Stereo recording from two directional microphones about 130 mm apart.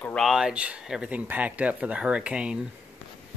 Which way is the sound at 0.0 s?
5° left (ahead or behind).